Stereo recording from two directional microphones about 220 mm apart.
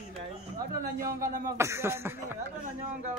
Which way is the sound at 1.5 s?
10° right (ahead or behind).